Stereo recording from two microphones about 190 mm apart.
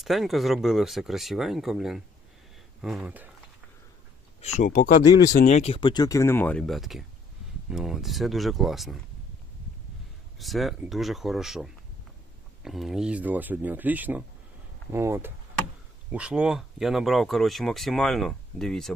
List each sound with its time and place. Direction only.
0.0 s speech: centre (ahead or behind)
4.6 s speech: 45° left (ahead or behind); by 8.9 s centre (ahead or behind)
10.4 s speech: centre (ahead or behind)